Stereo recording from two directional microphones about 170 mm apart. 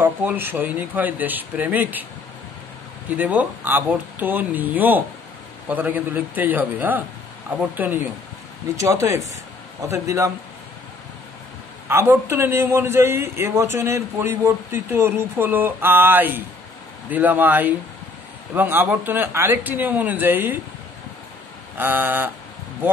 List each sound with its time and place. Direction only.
0.0 s speech: 10° right (ahead or behind)
3.2 s speech: 10° right (ahead or behind)
11.9 s speech: 15° right (ahead or behind)
21.7 s speech: 10° right (ahead or behind)